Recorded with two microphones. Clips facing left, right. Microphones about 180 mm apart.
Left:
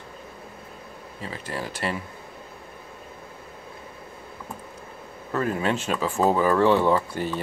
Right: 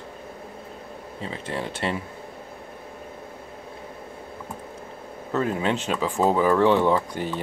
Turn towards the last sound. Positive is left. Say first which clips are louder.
# even
turn(degrees=-15)  # may be behind; listen again after turning